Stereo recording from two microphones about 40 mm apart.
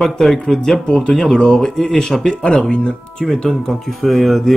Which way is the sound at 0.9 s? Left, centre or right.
Centre.